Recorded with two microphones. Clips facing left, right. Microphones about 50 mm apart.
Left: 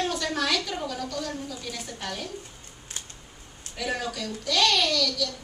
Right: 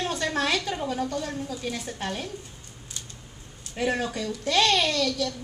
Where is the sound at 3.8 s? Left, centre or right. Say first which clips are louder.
Right 3 dB; right.